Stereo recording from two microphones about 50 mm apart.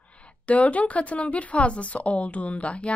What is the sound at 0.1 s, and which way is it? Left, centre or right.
A woman's voice, left.